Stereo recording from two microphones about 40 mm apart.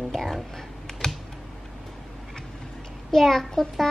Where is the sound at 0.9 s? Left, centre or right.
Centre.